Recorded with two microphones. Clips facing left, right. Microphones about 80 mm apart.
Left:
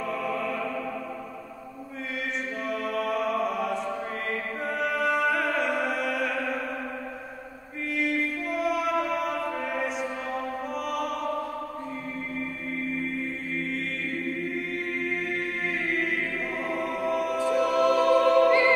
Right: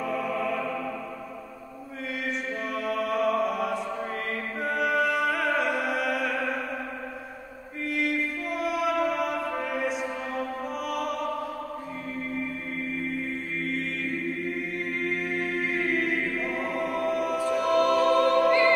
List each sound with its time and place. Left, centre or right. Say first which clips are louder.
0.0 s music: right 1 dB; centre
2.7 s music: even; centre
7.9 s music: left 1 dB; centre
10.9 s opera: even; centre
15.0 s choir: right 1 dB; centre
17.5 s music: even; centre